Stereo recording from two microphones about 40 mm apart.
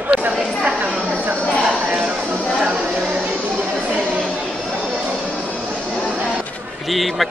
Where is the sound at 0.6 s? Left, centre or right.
Right.